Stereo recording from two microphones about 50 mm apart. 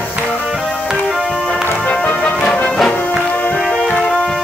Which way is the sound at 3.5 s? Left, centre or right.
Centre.